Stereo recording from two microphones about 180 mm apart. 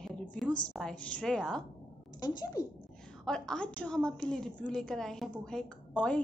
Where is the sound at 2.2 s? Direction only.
20° left (ahead or behind).